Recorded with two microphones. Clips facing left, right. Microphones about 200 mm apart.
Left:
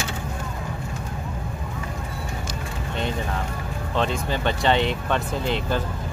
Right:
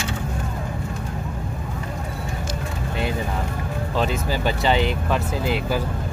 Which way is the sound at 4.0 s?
5° right (ahead or behind).